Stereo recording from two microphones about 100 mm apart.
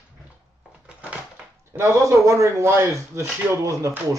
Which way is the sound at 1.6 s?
30° right (ahead or behind).